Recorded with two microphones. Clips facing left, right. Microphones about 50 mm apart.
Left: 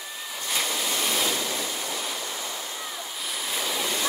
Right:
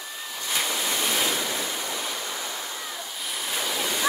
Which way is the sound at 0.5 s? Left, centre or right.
Centre.